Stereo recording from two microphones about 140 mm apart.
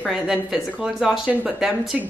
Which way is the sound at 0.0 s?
Centre (ahead or behind).